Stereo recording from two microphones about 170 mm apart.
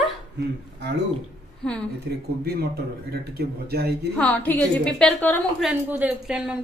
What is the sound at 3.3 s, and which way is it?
Speech, 65° right (ahead or behind).